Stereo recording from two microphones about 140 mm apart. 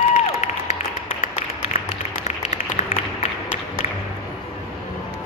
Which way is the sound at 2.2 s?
50° left (ahead or behind).